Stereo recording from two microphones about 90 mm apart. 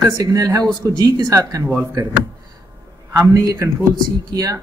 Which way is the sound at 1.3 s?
35° right (ahead or behind).